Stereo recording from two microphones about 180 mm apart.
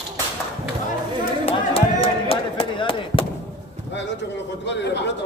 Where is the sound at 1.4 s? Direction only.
30° left (ahead or behind).